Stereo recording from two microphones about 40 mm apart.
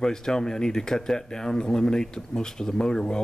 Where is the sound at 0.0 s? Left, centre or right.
Centre.